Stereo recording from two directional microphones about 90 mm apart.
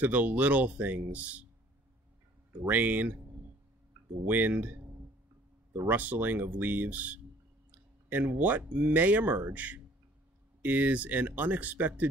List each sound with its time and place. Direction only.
0.0 s speech: 20° right (ahead or behind)
2.6 s speech: 20° right (ahead or behind)
4.3 s speech: 20° right (ahead or behind)
5.9 s speech: 20° right (ahead or behind)